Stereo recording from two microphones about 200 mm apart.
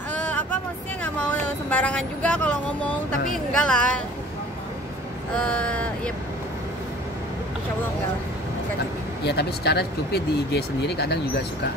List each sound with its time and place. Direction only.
0.1 s vehicle: 5° left (ahead or behind)
1.0 s speech: 5° left (ahead or behind)
5.4 s speech: 5° left (ahead or behind)
9.2 s speech: 55° left (ahead or behind)